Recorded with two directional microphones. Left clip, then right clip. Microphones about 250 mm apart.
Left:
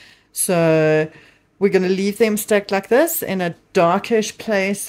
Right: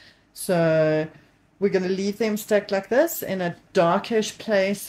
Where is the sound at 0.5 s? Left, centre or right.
Left.